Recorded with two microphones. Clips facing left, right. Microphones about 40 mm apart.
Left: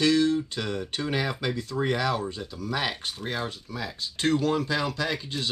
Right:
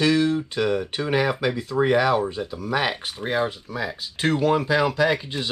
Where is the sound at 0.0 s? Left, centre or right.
Centre.